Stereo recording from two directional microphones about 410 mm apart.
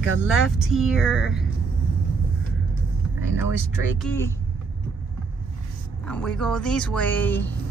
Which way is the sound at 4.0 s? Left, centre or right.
Centre.